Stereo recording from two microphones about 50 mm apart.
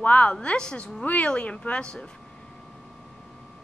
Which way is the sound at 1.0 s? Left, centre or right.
Left.